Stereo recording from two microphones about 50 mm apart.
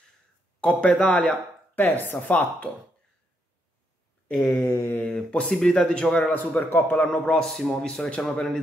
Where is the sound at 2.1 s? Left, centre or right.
Left.